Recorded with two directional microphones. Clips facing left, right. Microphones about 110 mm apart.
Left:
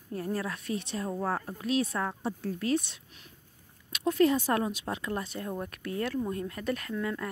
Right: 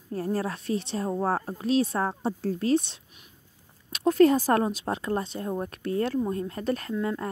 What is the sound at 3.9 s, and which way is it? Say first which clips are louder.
Speech: right 5 dB; 40° right (ahead or behind).